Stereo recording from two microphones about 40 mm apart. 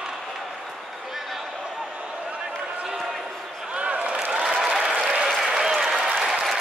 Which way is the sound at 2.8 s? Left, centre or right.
Centre.